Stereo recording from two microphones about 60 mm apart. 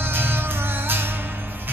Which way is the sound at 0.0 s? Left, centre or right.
Right.